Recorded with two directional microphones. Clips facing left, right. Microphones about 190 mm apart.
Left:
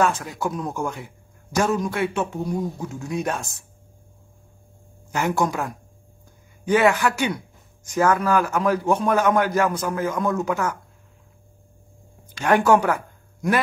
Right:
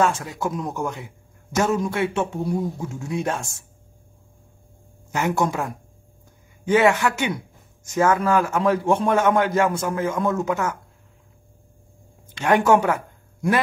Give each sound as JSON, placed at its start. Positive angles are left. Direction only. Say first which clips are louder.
{"t": 0.0, "sound": "a man's voice", "louder": "even", "side_deg": -25}
{"t": 5.1, "sound": "a man's voice", "louder": "even", "side_deg": -20}
{"t": 12.3, "sound": "speech", "louder": "even", "side_deg": -20}